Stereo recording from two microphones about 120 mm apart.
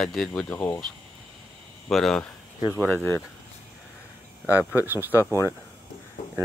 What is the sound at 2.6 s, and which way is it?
Speech, 15° right (ahead or behind).